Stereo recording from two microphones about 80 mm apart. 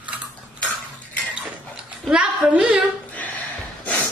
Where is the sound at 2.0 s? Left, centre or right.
Centre.